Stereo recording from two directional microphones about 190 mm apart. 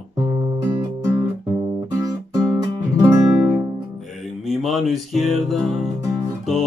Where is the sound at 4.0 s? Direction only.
Centre (ahead or behind).